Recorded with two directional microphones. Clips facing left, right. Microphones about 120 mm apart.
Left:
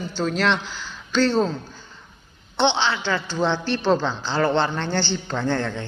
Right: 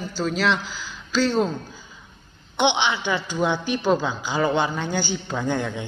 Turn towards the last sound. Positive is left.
turn(degrees=-15)  # may be behind; listen again after turning